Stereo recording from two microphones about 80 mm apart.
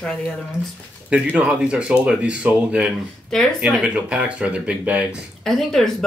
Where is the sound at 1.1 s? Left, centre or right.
Centre.